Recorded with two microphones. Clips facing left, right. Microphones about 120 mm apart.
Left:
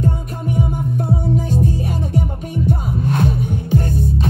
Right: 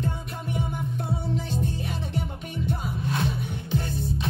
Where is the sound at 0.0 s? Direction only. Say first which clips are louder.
Left 9 dB; 45° left (ahead or behind).